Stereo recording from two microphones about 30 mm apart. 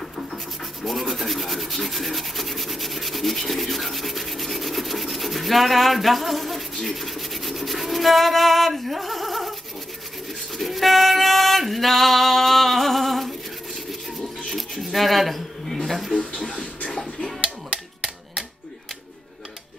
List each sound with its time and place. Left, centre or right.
0.8 s rub: centre
10.6 s music: centre
14.5 s a sound: centre
16.4 s music: left
16.9 s music: centre